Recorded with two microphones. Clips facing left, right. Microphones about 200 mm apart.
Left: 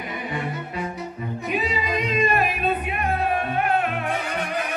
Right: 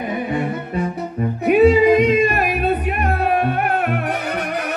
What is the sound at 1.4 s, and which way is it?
Music, 60° right (ahead or behind).